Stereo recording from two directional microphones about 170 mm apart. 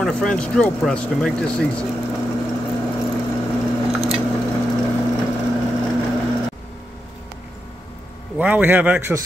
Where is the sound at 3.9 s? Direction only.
Centre (ahead or behind).